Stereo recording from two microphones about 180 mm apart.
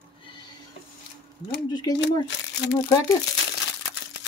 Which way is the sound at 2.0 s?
80° left.